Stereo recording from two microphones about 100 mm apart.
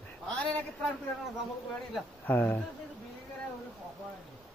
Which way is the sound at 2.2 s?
15° left (ahead or behind).